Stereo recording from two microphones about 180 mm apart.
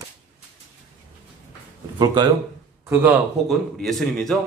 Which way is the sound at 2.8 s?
10° right (ahead or behind).